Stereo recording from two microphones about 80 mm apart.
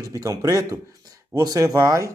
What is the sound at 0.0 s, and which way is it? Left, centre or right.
A man's voice, right.